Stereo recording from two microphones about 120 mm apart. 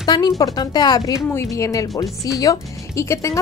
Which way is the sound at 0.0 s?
35° left (ahead or behind).